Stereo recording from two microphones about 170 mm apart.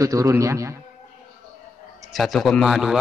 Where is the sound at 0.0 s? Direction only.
20° right (ahead or behind).